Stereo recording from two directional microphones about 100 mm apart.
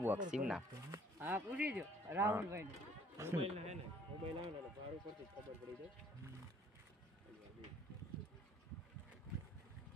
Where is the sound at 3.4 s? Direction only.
90° right.